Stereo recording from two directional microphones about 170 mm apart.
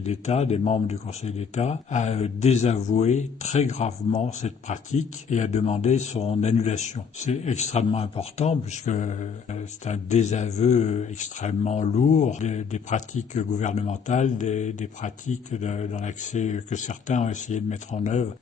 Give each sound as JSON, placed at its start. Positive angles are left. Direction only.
{"t": 0.0, "sound": "speech", "side_deg": 40}